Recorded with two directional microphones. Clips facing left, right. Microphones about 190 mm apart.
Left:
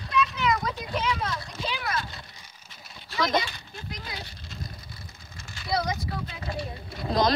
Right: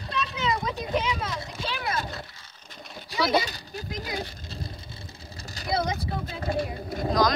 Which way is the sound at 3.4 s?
35° right (ahead or behind).